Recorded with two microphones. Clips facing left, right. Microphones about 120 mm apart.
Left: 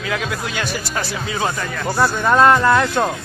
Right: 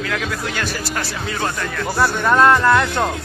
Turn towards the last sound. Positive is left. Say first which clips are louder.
# even
turn(degrees=10)  # may be behind; listen again after turning